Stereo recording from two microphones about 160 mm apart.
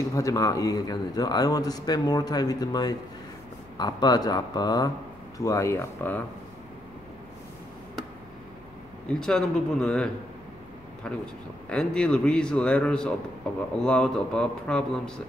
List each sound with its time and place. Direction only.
0.1 s a man's voice: 20° left (ahead or behind)
9.1 s a man's voice: 5° left (ahead or behind)